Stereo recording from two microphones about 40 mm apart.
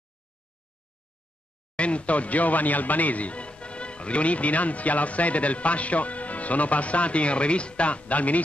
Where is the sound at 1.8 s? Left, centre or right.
Left.